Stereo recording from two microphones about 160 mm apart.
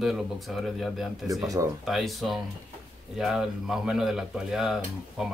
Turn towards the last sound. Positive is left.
turn(degrees=0)  # may be behind; listen again after turning